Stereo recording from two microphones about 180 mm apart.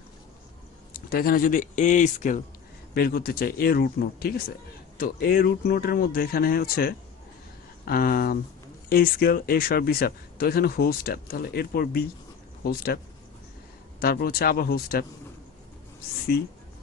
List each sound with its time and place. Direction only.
1.1 s a man's voice: 55° left (ahead or behind)
2.9 s speech: 55° left (ahead or behind)